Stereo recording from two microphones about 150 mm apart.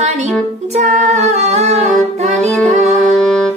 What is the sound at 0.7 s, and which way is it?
Female singing, 50° right (ahead or behind).